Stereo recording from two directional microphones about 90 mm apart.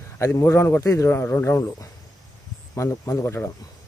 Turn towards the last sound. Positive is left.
turn(degrees=30)  # may be behind; listen again after turning